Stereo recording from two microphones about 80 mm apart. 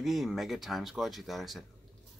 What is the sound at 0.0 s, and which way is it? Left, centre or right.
Speech, centre.